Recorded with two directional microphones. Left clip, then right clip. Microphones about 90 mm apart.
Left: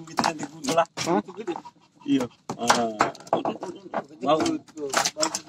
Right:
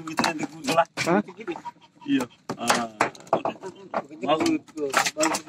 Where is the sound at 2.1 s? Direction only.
35° right (ahead or behind).